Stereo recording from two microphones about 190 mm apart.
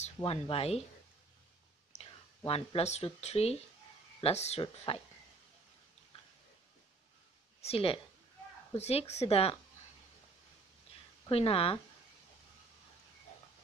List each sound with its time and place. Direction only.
0.0 s speech: 30° left (ahead or behind)
2.0 s speech: 30° left (ahead or behind)
7.6 s speech: 30° left (ahead or behind)
11.2 s speech: 30° left (ahead or behind)